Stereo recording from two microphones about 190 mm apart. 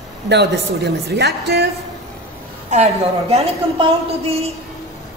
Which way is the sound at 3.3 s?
35° right (ahead or behind).